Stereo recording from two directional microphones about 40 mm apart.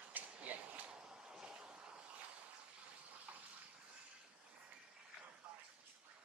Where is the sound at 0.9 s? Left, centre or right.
Centre.